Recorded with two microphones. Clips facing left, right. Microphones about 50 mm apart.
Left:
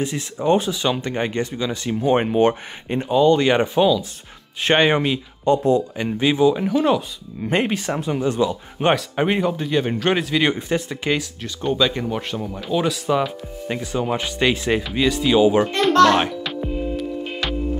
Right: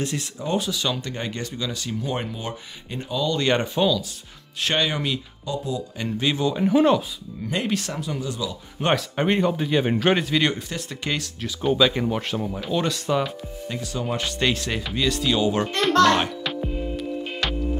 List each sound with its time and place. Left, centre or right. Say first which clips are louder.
0.0 s speech: left 3 dB; centre
0.4 s speech: left 7 dB; left
2.2 s speech: left 14 dB; left
3.0 s speech: left 9 dB; left
3.6 s speech: left 5 dB; centre
4.6 s speech: left 7 dB; left
5.8 s speech: left 6 dB; left
7.4 s speech: left 5 dB; left
8.9 s speech: left 2 dB; centre
10.7 s speech: left 7 dB; centre
11.4 s speech: right 2 dB; centre
13.7 s speech: left 5 dB; left
16.4 s music: left 3 dB; centre